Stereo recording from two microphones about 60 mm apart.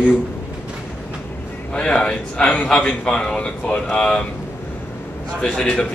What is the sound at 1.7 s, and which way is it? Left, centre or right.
A man's voice, centre.